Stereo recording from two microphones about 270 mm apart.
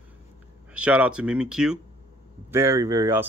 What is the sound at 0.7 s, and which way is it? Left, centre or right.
Speech, centre.